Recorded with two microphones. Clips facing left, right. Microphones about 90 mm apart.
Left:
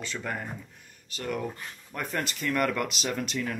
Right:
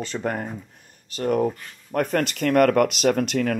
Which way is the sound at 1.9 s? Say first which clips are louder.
Right 10 dB; 65° right (ahead or behind).